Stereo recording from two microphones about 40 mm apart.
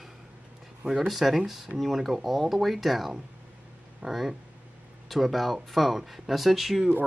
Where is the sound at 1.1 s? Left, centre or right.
Centre.